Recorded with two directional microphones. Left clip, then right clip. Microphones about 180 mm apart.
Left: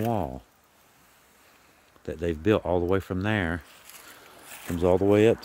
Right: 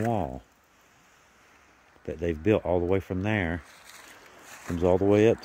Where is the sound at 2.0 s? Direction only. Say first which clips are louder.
Left 1 dB; 5° left (ahead or behind).